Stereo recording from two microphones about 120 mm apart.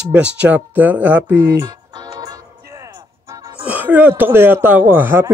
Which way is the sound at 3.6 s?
15° right (ahead or behind).